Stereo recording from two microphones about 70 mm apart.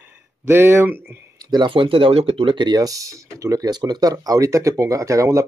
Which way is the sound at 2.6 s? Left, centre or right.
Right.